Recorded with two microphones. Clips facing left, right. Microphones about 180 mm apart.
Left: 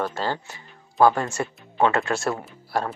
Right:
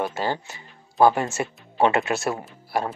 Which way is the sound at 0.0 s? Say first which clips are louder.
Right 1 dB; 15° right (ahead or behind).